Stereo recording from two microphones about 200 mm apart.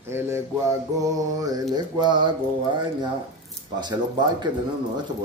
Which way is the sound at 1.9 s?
20° right (ahead or behind).